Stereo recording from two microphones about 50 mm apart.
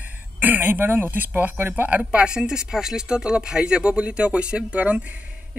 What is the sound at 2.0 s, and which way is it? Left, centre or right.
Speech, right.